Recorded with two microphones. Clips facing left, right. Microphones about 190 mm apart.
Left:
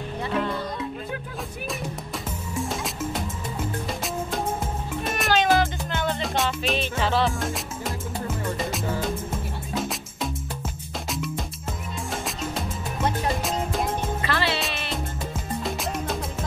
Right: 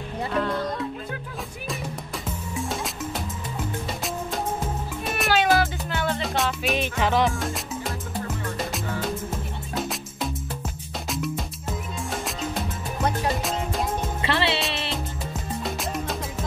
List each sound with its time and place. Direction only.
0.3 s music: centre (ahead or behind)
2.5 s music: centre (ahead or behind)
5.0 s music: centre (ahead or behind)
6.7 s music: 15° right (ahead or behind)
7.3 s music: centre (ahead or behind)
14.2 s music: 25° right (ahead or behind)
15.3 s music: centre (ahead or behind)